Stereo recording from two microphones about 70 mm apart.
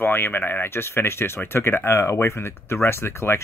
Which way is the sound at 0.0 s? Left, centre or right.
Left.